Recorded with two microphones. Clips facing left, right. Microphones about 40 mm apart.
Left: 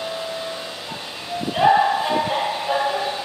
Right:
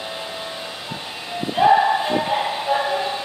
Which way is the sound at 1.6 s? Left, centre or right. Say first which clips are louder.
Right 1 dB; centre.